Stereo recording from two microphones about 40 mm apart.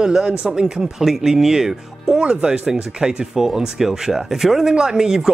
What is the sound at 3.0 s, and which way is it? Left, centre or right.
Speech, centre.